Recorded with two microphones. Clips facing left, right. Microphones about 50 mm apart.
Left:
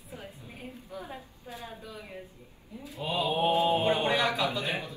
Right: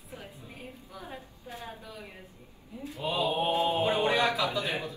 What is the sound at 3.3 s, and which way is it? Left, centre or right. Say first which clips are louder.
Speech: left 6 dB; left.